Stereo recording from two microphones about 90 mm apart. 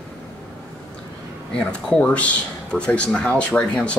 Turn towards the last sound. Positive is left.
turn(degrees=15)  # may be behind; listen again after turning